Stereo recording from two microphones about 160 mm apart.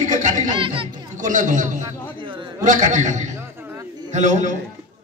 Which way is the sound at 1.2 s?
55° right (ahead or behind).